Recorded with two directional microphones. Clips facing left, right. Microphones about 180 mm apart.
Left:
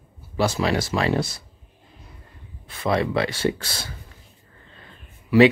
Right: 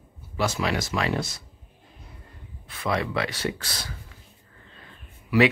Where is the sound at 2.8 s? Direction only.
30° left (ahead or behind).